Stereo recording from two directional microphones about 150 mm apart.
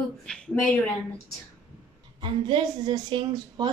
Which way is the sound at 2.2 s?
30° right (ahead or behind).